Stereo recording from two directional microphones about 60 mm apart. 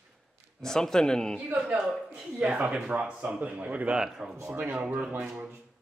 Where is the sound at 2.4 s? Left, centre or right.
Centre.